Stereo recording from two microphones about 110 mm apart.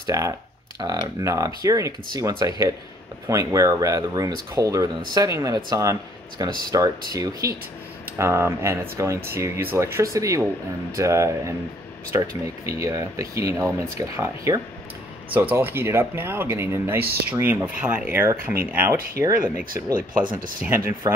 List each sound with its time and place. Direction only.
0.0 s speech: 30° right (ahead or behind)
20.6 s speech: 20° right (ahead or behind)